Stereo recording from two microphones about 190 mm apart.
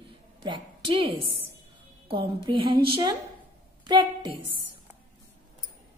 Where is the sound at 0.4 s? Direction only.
25° right (ahead or behind).